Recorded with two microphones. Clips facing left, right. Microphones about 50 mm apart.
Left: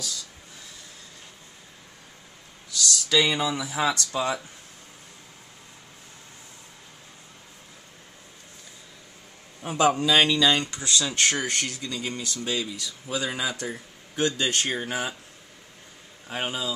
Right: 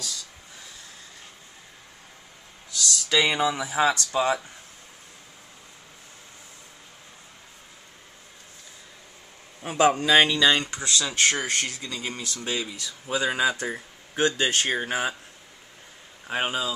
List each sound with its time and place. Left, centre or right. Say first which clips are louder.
2.7 s speech: left 1 dB; right
9.7 s speech: right 1 dB; right
16.3 s speech: right 3 dB; right